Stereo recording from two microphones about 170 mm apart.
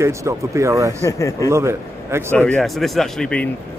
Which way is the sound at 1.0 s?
20° left (ahead or behind).